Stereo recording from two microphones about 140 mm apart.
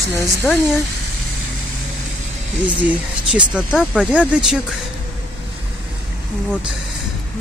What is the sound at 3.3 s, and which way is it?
Speech, 5° right (ahead or behind).